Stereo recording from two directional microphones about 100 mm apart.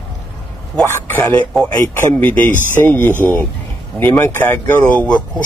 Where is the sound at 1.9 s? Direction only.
25° left (ahead or behind).